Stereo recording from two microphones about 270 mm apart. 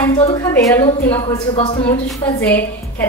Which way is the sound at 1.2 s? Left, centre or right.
Left.